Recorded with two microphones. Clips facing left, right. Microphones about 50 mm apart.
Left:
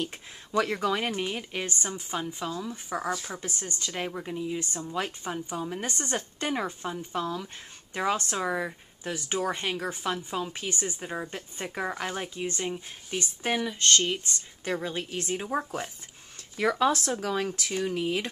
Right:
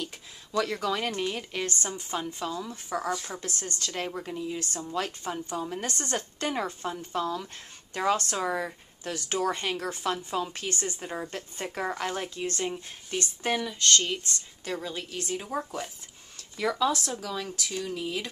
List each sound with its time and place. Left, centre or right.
0.0 s a sound: left
0.9 s speech: centre
2.7 s speech: centre
3.1 s speech: centre
3.3 s speech: centre
15.4 s speech: centre
16.5 s speech: left